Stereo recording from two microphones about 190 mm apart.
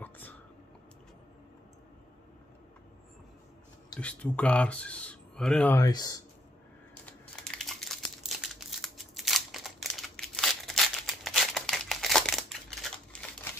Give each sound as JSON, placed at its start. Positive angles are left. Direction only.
{"t": 4.0, "sound": "speech", "side_deg": 5}
{"t": 5.8, "sound": "speech", "side_deg": 20}
{"t": 7.1, "sound": "crumpling", "side_deg": 0}
{"t": 8.3, "sound": "a sound", "side_deg": 0}